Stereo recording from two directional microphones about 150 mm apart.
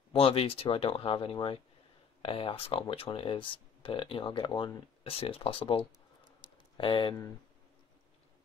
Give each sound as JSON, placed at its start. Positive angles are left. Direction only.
{"t": 0.1, "sound": "speech", "side_deg": 40}
{"t": 5.0, "sound": "speech", "side_deg": 40}